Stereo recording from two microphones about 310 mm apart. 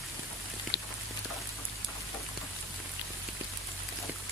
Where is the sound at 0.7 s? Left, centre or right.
Left.